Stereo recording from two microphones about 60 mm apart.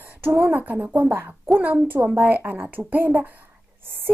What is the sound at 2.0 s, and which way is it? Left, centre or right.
A woman's voice, right.